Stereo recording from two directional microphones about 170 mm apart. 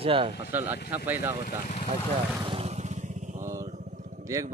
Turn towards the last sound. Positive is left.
turn(degrees=-20)  # may be behind; listen again after turning